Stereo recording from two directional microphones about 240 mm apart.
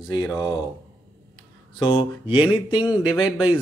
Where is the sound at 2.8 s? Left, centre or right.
Centre.